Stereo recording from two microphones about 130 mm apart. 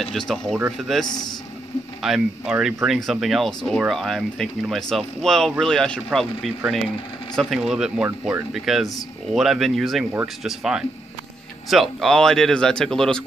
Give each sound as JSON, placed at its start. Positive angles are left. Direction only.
{"t": 0.6, "sound": "speech", "side_deg": -5}
{"t": 1.0, "sound": "speech", "side_deg": 30}
{"t": 2.0, "sound": "speech", "side_deg": 0}
{"t": 7.3, "sound": "speech", "side_deg": 0}